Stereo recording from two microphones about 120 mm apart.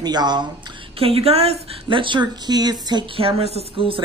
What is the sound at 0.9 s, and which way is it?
A woman's voice, 55° right (ahead or behind).